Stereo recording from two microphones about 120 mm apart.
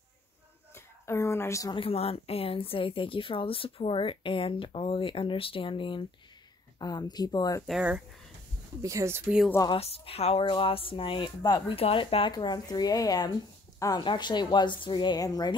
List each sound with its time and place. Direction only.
0.7 s a sound: 25° left (ahead or behind)
1.7 s a woman's voice: 50° left (ahead or behind); by 7.6 s 30° left (ahead or behind)
8.8 s speech: 25° right (ahead or behind)
9.8 s a woman's voice: 55° left (ahead or behind); by 11.6 s 40° left (ahead or behind)
11.7 s speech: 50° left (ahead or behind); by 15.5 s 30° left (ahead or behind)